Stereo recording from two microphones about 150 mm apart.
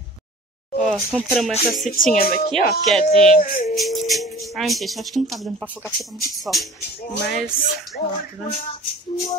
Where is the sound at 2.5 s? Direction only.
Centre (ahead or behind).